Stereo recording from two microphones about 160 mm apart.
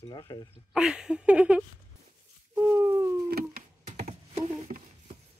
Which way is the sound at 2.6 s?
15° right (ahead or behind).